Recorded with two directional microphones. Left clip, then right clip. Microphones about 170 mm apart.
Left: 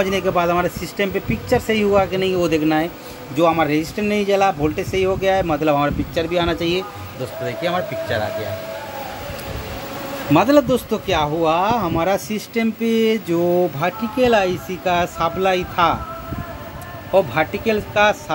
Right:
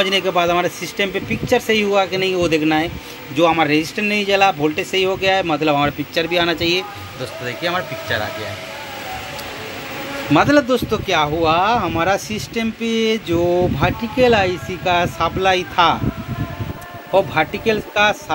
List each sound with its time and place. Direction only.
0.0 s speech: 5° left (ahead or behind)
3.3 s speech: 5° left (ahead or behind); by 8.2 s 20° left (ahead or behind)
10.3 s speech: 15° left (ahead or behind)
17.1 s speech: 5° left (ahead or behind)